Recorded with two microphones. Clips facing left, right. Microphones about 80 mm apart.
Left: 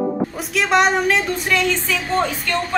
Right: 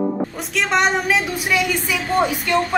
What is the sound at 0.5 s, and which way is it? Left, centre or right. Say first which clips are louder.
A woman's voice: left 2 dB; centre.